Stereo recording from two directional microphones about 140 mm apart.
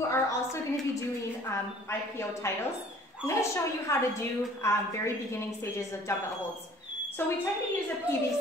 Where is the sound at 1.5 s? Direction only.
20° left (ahead or behind).